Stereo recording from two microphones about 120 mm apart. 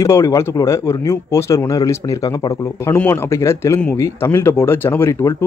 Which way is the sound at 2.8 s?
15° left (ahead or behind).